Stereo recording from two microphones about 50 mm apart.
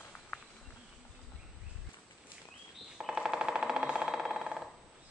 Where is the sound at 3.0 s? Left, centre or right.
Centre.